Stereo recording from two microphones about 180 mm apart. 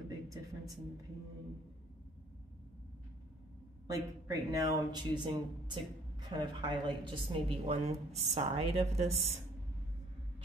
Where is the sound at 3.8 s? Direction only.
20° right (ahead or behind).